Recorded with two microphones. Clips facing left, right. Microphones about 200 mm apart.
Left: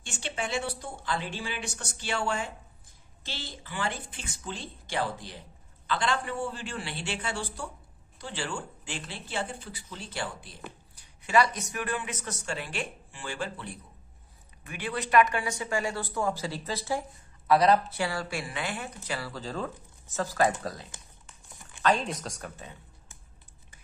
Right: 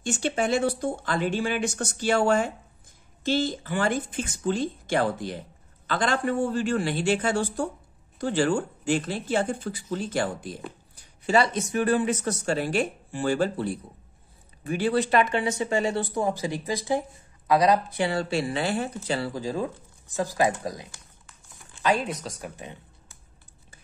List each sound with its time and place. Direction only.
0.0 s speech: 45° right (ahead or behind)
11.2 s speech: 30° right (ahead or behind)
19.3 s speech: 15° right (ahead or behind)